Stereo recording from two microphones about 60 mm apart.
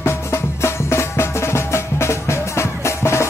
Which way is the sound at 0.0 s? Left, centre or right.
Left.